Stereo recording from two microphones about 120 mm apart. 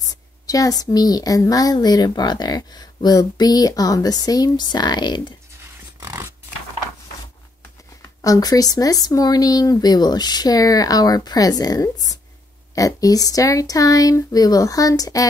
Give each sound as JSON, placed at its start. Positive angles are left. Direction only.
{"t": 0.0, "sound": "a woman's voice", "side_deg": 30}
{"t": 5.9, "sound": "a sound", "side_deg": -25}
{"t": 8.2, "sound": "a woman's voice", "side_deg": 30}